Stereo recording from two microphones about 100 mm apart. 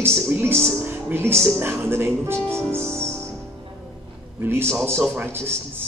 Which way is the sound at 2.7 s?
25° right (ahead or behind).